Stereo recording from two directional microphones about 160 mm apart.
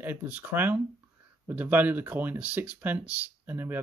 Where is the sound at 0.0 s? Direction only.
10° right (ahead or behind).